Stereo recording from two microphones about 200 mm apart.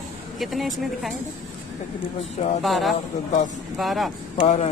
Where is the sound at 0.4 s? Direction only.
Centre (ahead or behind).